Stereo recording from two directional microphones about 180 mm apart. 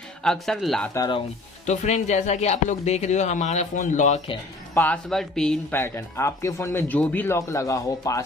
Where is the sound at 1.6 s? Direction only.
40° left (ahead or behind).